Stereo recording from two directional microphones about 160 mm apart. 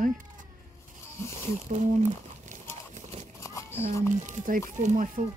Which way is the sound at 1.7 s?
50° right (ahead or behind).